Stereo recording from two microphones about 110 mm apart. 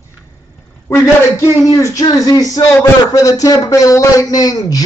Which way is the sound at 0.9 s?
30° left (ahead or behind).